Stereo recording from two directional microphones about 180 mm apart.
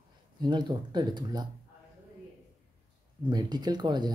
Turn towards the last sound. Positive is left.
turn(degrees=-25)  # may be behind; listen again after turning